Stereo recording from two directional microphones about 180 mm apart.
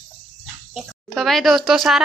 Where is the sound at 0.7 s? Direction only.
Centre (ahead or behind).